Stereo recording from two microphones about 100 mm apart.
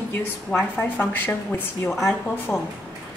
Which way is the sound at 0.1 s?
20° left (ahead or behind).